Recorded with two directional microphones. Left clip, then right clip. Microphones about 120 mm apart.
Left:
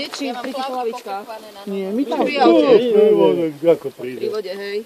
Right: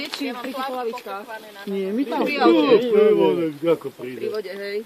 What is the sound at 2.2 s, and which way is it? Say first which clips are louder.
Speech: left 4 dB; 10° left (ahead or behind).